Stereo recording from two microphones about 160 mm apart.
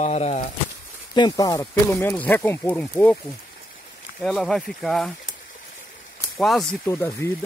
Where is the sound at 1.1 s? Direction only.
25° left (ahead or behind).